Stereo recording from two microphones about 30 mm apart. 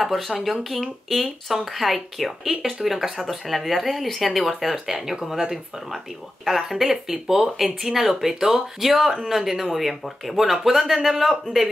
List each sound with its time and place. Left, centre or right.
0.0 s speech: centre
6.7 s speech: centre
11.6 s speech: centre